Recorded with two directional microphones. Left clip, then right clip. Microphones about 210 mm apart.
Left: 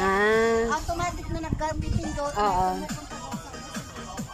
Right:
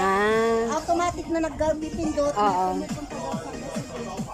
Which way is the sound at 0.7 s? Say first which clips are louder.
Right 4 dB; 35° right (ahead or behind).